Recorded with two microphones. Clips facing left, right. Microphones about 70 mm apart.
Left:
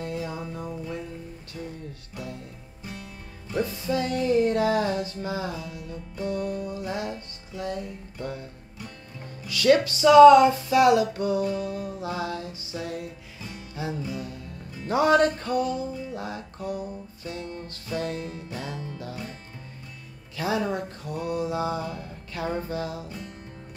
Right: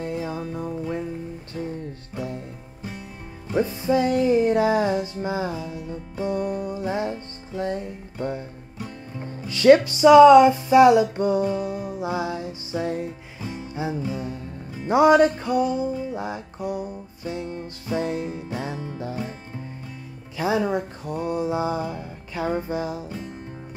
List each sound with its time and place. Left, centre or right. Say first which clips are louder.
0.0 s music: right 4 dB; right
1.6 s music: right 6 dB; right
2.1 s music: right 6 dB; right
3.5 s music: right 5 dB; right
12.7 s music: right 7 dB; right
20.3 s music: right 4 dB; right